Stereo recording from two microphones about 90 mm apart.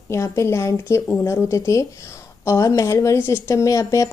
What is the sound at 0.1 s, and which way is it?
Speech, 30° left (ahead or behind).